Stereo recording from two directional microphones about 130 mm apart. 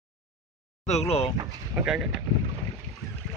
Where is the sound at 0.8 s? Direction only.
55° left (ahead or behind).